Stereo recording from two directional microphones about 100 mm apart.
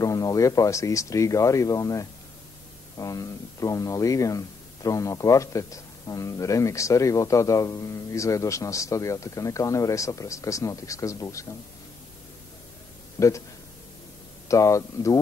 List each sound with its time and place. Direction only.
0.0 s speech: 35° left (ahead or behind)
13.2 s a man's voice: 30° left (ahead or behind)
14.5 s speech: 30° left (ahead or behind)